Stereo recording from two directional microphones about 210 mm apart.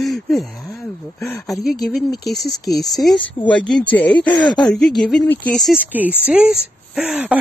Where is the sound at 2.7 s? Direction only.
Centre (ahead or behind).